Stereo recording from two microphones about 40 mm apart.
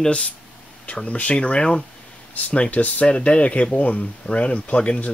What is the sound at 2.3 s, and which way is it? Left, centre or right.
Speech, left.